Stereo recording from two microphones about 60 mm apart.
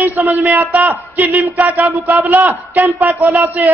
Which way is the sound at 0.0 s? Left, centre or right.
Right.